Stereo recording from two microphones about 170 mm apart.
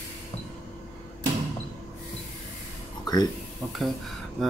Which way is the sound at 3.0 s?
25° left (ahead or behind).